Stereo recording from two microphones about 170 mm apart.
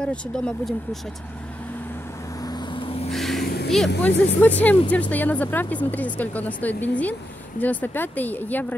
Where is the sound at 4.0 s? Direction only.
10° left (ahead or behind).